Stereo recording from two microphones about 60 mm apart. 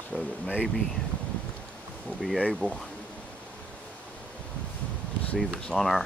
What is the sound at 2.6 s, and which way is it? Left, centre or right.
Speech, right.